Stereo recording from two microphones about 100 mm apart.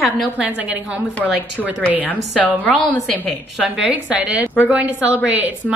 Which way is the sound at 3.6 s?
15° right (ahead or behind).